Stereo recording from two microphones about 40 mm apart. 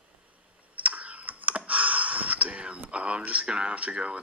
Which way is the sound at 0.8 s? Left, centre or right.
Right.